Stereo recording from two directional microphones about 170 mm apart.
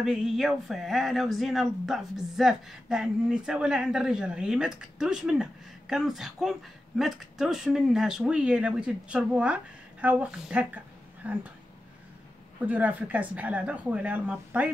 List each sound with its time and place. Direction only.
0.0 s speech: 5° right (ahead or behind)
12.5 s speech: 10° right (ahead or behind)